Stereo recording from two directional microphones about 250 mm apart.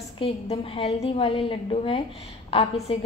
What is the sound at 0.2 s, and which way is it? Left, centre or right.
A woman's voice, left.